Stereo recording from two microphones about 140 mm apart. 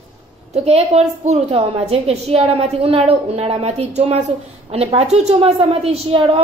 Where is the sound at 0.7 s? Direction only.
50° right (ahead or behind).